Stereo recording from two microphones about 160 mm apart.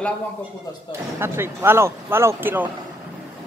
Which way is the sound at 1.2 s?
15° right (ahead or behind).